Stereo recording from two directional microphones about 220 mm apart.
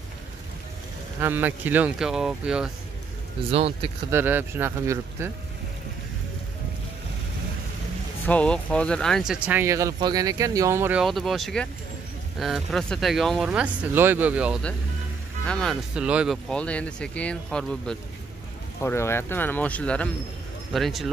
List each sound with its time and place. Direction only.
1.2 s speech: 10° right (ahead or behind)
3.5 s speech: 25° right (ahead or behind)
4.1 s speech: 10° right (ahead or behind)
8.3 s speech: 5° left (ahead or behind)